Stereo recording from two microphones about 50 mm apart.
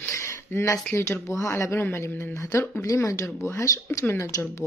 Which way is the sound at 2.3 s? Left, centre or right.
Left.